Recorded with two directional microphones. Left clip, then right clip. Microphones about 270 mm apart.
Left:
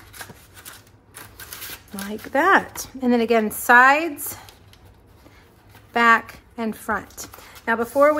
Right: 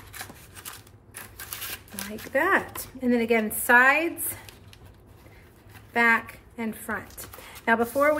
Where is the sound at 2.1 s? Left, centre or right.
Centre.